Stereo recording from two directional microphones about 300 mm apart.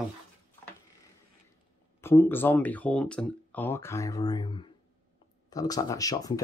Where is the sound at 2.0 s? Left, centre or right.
Centre.